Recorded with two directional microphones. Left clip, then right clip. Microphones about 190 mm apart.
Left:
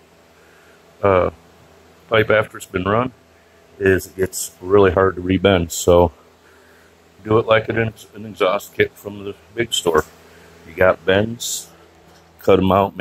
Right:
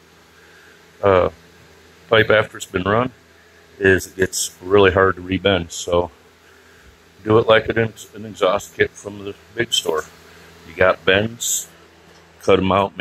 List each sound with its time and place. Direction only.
1.0 s speech: centre (ahead or behind)
5.2 s speech: 25° left (ahead or behind)
7.2 s speech: 5° right (ahead or behind); by 11.2 s 15° left (ahead or behind)
12.4 s speech: 20° left (ahead or behind)